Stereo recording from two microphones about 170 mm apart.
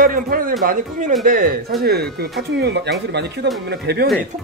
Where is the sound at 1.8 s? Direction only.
65° right (ahead or behind).